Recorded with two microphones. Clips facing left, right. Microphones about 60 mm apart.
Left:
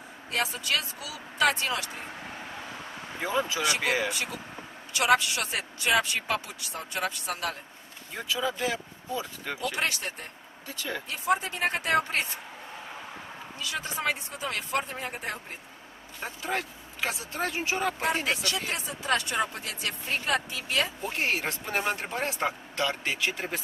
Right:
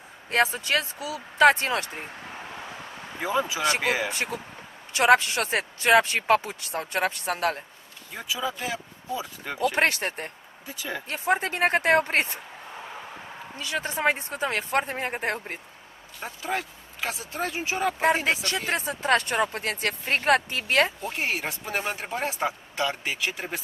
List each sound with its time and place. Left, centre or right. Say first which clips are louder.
0.3 s speech: right 6 dB; right
3.2 s speech: right 2 dB; centre
4.1 s speech: right 3 dB; right
8.2 s speech: left 1 dB; centre
9.8 s speech: right 7 dB; right
13.6 s speech: right 4 dB; right
16.2 s speech: right 1 dB; centre
18.4 s speech: right 4 dB; right
21.0 s speech: even; centre